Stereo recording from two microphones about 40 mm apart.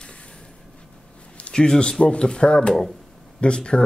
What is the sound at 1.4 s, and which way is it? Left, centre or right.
Speech, left.